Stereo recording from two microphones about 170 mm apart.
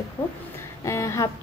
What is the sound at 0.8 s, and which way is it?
Speech, 15° left (ahead or behind).